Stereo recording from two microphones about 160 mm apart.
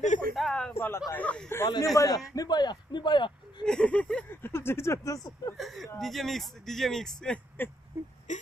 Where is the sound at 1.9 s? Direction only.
20° left (ahead or behind).